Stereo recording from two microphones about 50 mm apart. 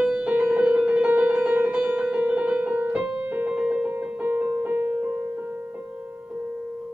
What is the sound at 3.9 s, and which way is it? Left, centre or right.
Music, right.